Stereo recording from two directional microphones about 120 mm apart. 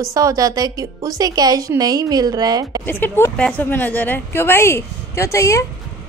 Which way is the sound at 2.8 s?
15° left (ahead or behind).